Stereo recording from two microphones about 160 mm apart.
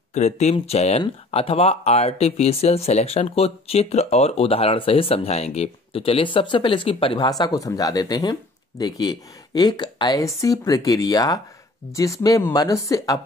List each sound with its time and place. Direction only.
0.1 s speech: 45° left (ahead or behind); by 13.2 s 20° left (ahead or behind)